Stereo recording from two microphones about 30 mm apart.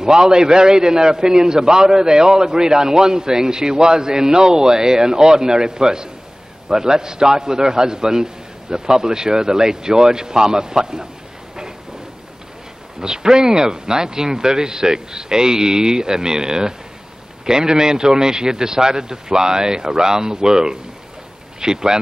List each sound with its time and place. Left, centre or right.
0.0 s a man's voice: right
13.0 s a man's voice: right